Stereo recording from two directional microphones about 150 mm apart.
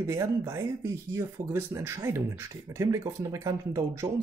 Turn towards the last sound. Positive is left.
turn(degrees=-20)  # may be behind; listen again after turning